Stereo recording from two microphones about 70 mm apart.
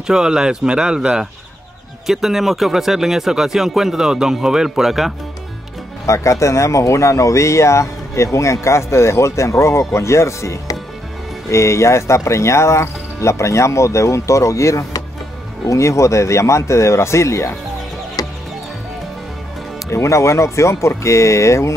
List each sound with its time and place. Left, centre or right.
0.0 s speech: centre
6.0 s speech: left
18.2 s music: left
19.9 s speech: left